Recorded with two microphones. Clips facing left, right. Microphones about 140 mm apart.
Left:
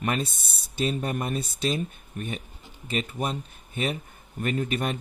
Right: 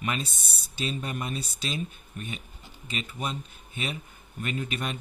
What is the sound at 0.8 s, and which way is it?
Speech, 50° left (ahead or behind).